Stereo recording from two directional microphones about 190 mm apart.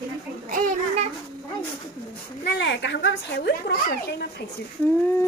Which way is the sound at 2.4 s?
65° left (ahead or behind).